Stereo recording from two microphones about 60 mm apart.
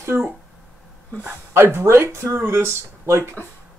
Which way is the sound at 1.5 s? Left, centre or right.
Right.